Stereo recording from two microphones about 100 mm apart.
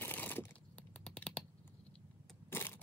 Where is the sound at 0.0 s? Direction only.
20° left (ahead or behind).